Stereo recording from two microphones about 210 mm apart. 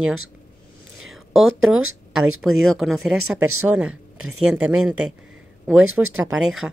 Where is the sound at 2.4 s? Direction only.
Centre (ahead or behind).